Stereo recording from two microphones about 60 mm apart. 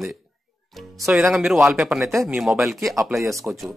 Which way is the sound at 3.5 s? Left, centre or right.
Right.